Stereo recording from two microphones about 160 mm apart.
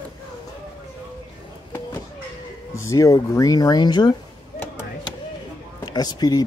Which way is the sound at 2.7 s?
20° left (ahead or behind).